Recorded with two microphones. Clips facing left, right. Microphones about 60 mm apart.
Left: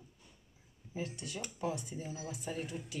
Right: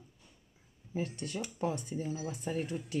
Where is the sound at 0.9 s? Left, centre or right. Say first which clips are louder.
Right 5 dB; right.